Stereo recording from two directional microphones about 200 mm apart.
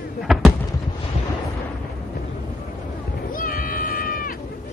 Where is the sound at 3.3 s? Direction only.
45° left (ahead or behind).